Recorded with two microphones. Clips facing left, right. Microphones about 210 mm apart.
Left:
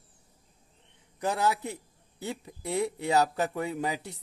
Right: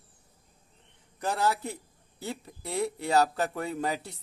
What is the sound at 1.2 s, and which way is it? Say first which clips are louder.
A man's voice: left 1 dB; 20° left (ahead or behind).